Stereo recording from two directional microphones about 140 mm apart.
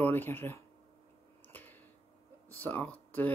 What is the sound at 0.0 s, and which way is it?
Speech, 15° left (ahead or behind).